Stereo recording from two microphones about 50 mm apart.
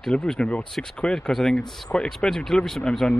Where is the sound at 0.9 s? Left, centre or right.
Centre.